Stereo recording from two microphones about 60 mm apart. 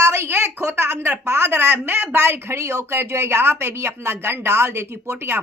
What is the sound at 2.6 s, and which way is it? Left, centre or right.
Speech, right.